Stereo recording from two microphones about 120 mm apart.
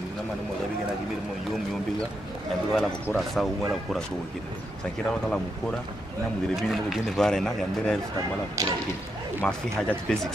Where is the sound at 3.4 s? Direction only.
Centre (ahead or behind).